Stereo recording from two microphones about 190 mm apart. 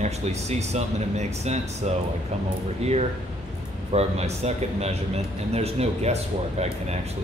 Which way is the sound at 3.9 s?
35° right (ahead or behind).